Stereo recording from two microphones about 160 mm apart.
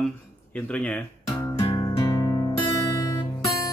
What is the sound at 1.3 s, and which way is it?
Music, 25° left (ahead or behind).